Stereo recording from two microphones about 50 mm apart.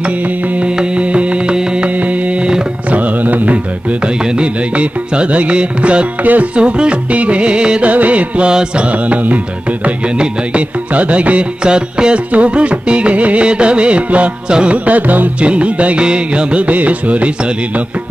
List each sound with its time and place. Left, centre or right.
0.6 s music: right
2.0 s music: right
3.0 s music: right
4.0 s music: centre
7.9 s music: right
9.8 s music: right
14.9 s music: right